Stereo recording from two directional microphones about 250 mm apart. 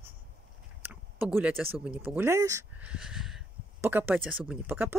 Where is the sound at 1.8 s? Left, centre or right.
Centre.